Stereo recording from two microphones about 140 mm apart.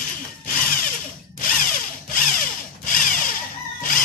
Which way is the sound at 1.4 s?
75° left (ahead or behind).